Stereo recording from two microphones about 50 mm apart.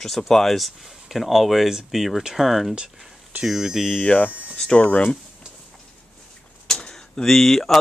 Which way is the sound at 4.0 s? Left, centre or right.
Left.